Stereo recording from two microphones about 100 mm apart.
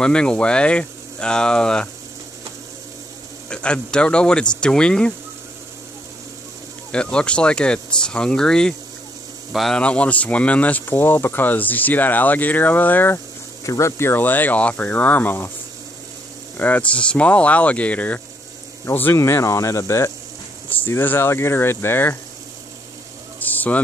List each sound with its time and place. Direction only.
0.0 s speech: 10° left (ahead or behind)
3.4 s speech: 10° left (ahead or behind)
6.9 s speech: 10° left (ahead or behind)
9.8 s speech: 10° left (ahead or behind)
13.7 s speech: 30° left (ahead or behind)
16.5 s speech: 15° left (ahead or behind)
23.4 s a sound: 15° left (ahead or behind)